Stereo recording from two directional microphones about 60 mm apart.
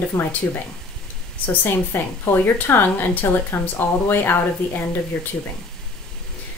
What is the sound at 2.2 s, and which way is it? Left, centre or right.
Speech, left.